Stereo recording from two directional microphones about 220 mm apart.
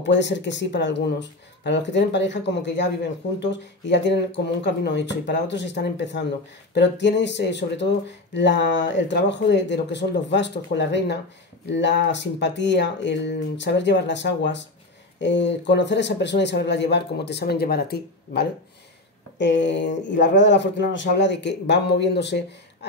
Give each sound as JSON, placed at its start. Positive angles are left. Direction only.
{"t": 0.0, "sound": "speech", "side_deg": 55}